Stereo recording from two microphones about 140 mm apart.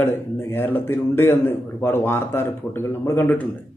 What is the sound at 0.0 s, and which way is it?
Speech, 15° left (ahead or behind).